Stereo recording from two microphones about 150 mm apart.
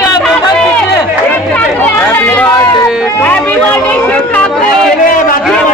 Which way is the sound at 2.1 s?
15° left (ahead or behind).